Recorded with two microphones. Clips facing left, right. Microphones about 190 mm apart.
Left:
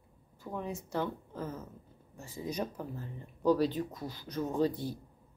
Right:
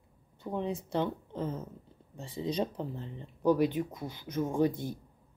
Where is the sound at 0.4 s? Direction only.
25° right (ahead or behind).